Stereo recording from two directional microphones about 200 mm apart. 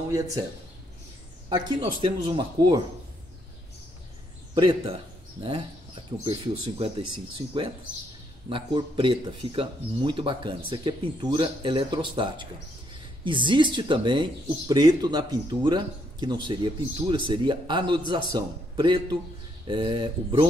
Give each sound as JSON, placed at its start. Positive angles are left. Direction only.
{"t": 1.5, "sound": "speech", "side_deg": -25}
{"t": 4.6, "sound": "speech", "side_deg": -25}
{"t": 6.2, "sound": "speech", "side_deg": -30}